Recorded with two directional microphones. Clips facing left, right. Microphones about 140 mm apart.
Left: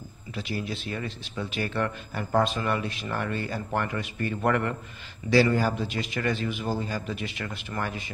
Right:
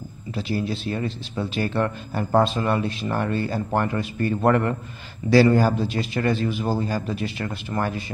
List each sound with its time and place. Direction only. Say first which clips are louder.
0.3 s a man's voice: right 6 dB; 35° right (ahead or behind)